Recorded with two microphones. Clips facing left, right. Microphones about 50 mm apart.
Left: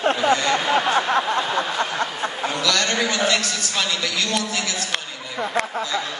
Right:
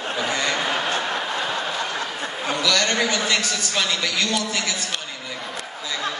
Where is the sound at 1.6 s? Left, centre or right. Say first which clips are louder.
Left 3 dB; left.